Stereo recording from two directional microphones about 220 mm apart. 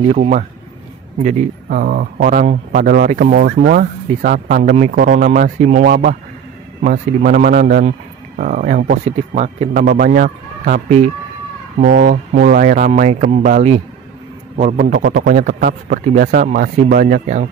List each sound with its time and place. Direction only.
0.1 s speech: 35° right (ahead or behind)
5.9 s a man's voice: 45° right (ahead or behind)